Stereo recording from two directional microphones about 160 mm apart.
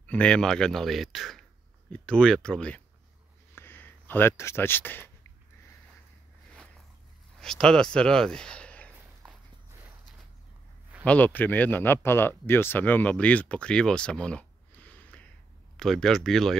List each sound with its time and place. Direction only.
0.0 s speech: 10° left (ahead or behind)
3.5 s a sound: 15° left (ahead or behind)
7.3 s speech: 5° left (ahead or behind)
11.1 s speech: 10° left (ahead or behind)